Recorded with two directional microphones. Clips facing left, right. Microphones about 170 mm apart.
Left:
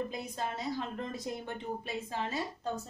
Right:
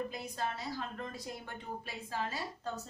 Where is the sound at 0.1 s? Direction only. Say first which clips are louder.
Left 2 dB; 20° left (ahead or behind).